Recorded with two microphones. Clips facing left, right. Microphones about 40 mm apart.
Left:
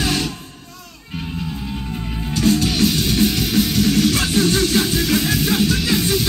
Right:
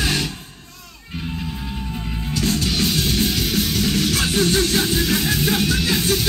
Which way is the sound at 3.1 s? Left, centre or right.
Centre.